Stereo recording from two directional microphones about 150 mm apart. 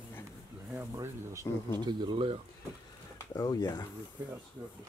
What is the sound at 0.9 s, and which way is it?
Speech, 20° right (ahead or behind).